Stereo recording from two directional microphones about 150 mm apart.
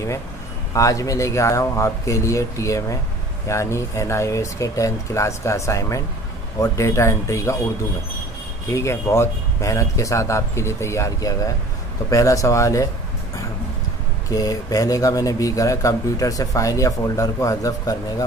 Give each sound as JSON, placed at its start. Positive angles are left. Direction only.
{"t": 0.7, "sound": "speech", "side_deg": 20}
{"t": 8.7, "sound": "speech", "side_deg": 20}
{"t": 14.3, "sound": "speech", "side_deg": 25}